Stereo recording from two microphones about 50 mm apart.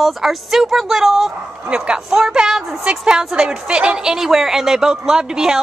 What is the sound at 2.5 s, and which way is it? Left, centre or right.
Speech, centre.